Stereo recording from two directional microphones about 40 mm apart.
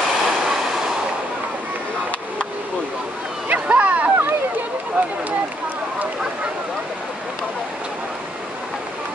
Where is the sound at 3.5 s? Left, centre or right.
Right.